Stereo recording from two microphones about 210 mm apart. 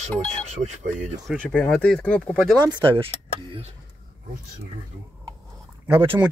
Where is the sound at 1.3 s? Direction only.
5° left (ahead or behind).